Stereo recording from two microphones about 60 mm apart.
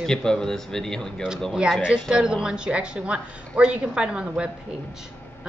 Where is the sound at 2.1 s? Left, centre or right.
Centre.